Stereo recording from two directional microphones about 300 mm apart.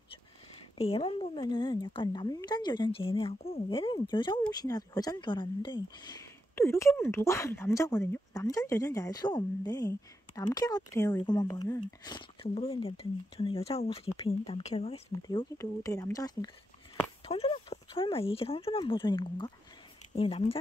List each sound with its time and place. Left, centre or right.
0.7 s a woman's voice: centre